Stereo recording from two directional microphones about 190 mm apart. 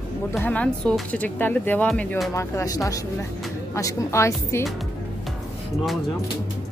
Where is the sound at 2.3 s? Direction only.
15° left (ahead or behind).